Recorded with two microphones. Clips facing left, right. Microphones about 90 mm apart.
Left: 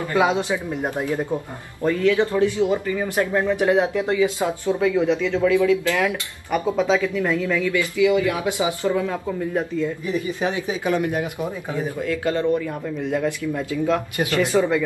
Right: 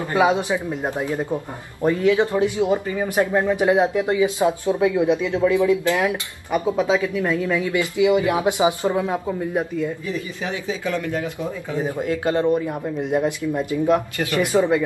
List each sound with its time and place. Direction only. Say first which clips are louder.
0.1 s speech: right 2 dB; 15° right (ahead or behind)
10.7 s speech: even; 20° left (ahead or behind)
11.7 s speech: right 3 dB; 20° right (ahead or behind)